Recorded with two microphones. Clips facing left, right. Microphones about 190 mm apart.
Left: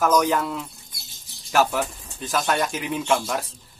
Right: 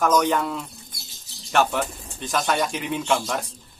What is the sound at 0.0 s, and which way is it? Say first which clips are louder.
Speech: even; centre (ahead or behind).